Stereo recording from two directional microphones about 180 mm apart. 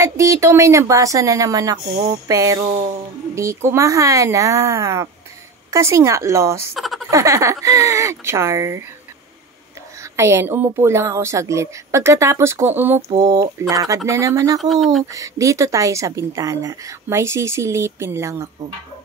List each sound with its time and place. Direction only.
0.0 s a woman's voice: 15° right (ahead or behind)
6.7 s a sound: centre (ahead or behind)
7.1 s a woman's voice: 15° right (ahead or behind)
10.1 s a woman's voice: 15° right (ahead or behind)
14.6 s speech: centre (ahead or behind)
15.1 s a woman's voice: 15° right (ahead or behind)